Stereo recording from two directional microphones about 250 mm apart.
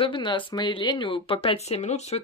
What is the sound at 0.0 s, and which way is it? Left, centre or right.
Speech, centre.